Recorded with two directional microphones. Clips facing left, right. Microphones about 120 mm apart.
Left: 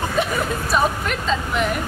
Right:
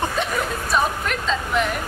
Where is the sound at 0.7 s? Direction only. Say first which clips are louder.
Left 1 dB; centre (ahead or behind).